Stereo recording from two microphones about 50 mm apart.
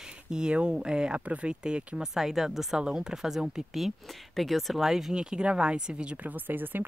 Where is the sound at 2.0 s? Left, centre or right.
Centre.